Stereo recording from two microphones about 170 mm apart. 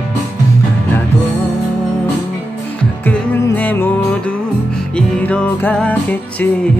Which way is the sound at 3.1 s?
10° left (ahead or behind).